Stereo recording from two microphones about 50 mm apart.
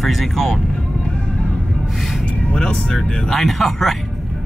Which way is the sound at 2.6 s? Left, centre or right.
Centre.